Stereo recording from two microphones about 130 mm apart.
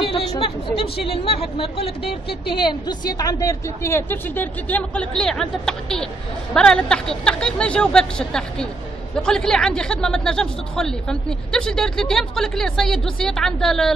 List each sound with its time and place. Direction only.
0.4 s a woman's voice: 45° left (ahead or behind); by 13.9 s 5° left (ahead or behind)